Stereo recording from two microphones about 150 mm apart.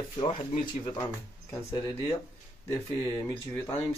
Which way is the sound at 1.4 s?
20° left (ahead or behind).